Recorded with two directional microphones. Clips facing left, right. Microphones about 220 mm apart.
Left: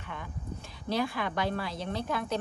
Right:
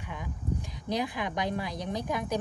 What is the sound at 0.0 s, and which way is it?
A woman's voice, 10° right (ahead or behind).